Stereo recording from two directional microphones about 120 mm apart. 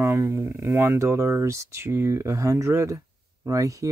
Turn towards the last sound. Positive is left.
turn(degrees=-25)  # may be behind; listen again after turning